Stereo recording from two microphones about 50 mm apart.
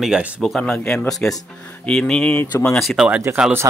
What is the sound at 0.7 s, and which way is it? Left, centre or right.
Speech, centre.